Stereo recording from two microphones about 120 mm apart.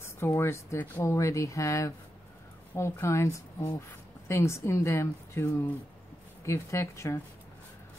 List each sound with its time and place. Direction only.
0.0 s speech: 20° left (ahead or behind)